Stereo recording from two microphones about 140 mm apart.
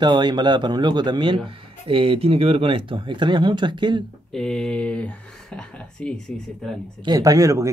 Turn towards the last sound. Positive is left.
turn(degrees=-20)  # may be behind; listen again after turning